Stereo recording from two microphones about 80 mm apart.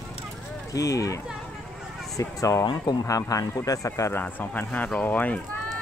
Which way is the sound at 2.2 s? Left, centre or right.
Left.